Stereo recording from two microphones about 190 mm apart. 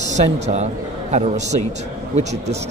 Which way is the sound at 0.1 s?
35° right (ahead or behind).